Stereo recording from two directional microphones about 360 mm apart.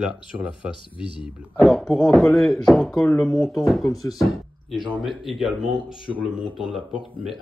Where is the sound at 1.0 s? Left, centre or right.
Centre.